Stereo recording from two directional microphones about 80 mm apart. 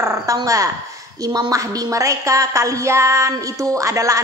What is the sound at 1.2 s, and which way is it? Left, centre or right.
A woman's voice, right.